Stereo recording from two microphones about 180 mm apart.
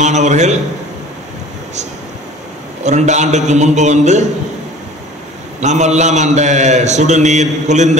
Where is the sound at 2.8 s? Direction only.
40° right (ahead or behind).